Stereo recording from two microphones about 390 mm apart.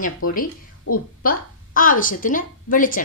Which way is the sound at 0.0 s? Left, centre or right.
Left.